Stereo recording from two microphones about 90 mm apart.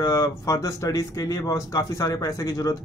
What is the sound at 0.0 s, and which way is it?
Speech, 35° left (ahead or behind).